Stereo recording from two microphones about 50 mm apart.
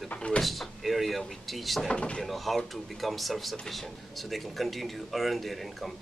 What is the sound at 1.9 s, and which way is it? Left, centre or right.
Speech, centre.